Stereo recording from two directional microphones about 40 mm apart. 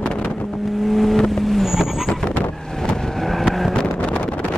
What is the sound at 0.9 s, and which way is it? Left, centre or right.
Vehicle, centre.